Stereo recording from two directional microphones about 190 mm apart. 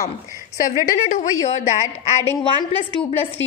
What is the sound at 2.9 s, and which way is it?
Speech, 25° left (ahead or behind).